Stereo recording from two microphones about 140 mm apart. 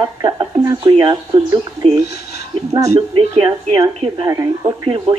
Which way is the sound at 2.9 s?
45° right (ahead or behind).